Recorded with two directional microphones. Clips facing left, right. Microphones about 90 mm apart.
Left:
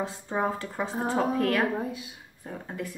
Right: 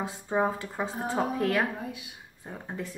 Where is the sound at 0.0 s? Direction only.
15° right (ahead or behind).